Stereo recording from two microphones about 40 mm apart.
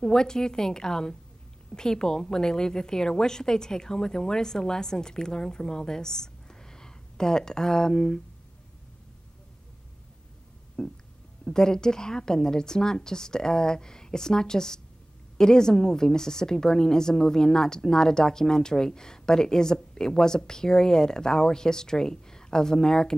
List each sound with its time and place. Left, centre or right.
0.0 s a woman's voice: centre
10.8 s a woman's voice: centre